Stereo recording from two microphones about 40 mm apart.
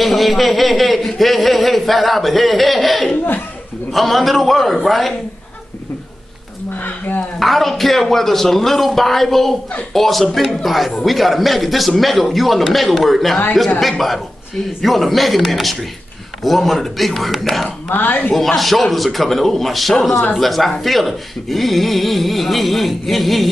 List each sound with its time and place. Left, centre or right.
0.0 s a sound: centre
6.8 s speech: left
7.3 s speech: centre
17.8 s a woman's voice: left
18.3 s speech: centre